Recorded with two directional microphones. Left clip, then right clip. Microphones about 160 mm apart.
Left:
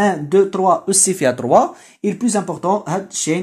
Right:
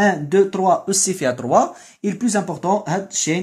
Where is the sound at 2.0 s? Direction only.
Centre (ahead or behind).